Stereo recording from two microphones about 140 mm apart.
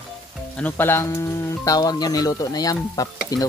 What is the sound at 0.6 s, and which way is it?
Speech, 15° left (ahead or behind).